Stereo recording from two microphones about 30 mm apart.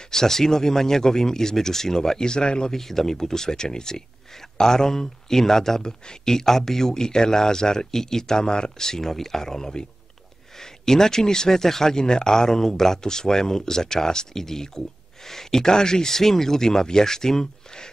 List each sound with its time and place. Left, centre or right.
0.1 s speech: centre
2.7 s speech: centre